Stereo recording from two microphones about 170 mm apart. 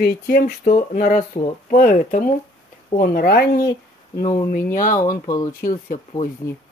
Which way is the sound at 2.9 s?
60° left (ahead or behind).